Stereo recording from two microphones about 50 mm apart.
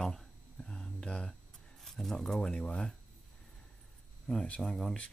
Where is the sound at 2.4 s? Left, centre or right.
Left.